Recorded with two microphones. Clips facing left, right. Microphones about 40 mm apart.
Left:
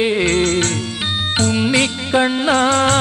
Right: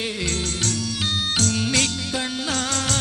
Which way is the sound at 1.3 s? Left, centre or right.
Left.